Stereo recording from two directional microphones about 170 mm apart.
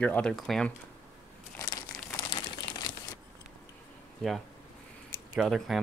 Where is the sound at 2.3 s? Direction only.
25° left (ahead or behind).